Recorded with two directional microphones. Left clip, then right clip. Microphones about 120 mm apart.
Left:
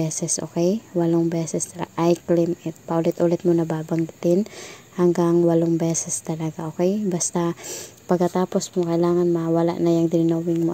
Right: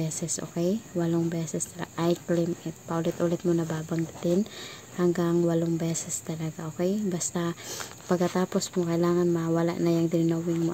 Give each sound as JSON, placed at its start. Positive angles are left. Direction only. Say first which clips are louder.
{"t": 0.0, "sound": "speech", "louder": "left 7 dB", "side_deg": 45}
{"t": 5.3, "sound": "speech", "louder": "left 7 dB", "side_deg": 35}